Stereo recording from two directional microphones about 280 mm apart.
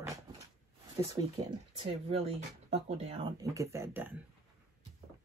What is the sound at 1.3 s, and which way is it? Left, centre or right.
Speech, right.